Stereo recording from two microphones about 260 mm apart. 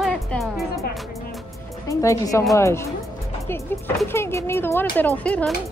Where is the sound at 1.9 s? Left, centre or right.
Centre.